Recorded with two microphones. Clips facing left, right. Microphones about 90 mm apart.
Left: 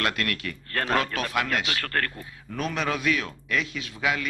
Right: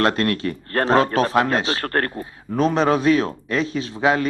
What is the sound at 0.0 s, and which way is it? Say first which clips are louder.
Speech: right 9 dB; 35° right (ahead or behind).